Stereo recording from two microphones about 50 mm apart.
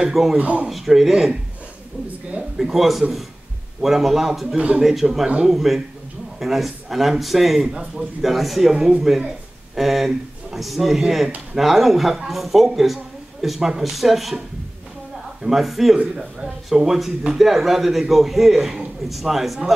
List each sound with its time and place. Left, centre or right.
0.1 s speech: centre
0.4 s speech: right
0.7 s speech: centre
4.6 s speech: right
4.8 s speech: centre
15.4 s speech: centre